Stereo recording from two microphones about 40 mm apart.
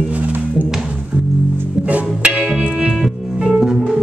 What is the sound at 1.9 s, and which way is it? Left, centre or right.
Music, right.